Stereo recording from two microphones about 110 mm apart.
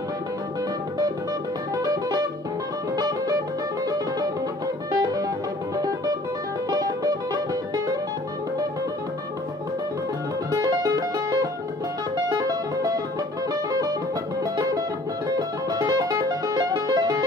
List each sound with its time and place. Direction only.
1.8 s music: 35° right (ahead or behind)
5.0 s music: 30° right (ahead or behind)
6.7 s music: 35° right (ahead or behind)
10.5 s music: 35° right (ahead or behind)